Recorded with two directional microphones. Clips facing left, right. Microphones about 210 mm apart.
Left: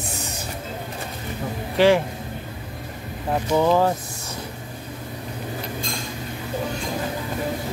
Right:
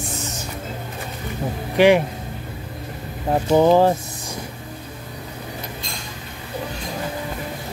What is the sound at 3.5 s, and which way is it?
Speech, 30° right (ahead or behind).